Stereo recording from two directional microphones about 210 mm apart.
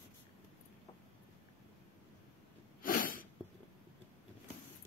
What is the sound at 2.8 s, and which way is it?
Sneeze, 40° left (ahead or behind).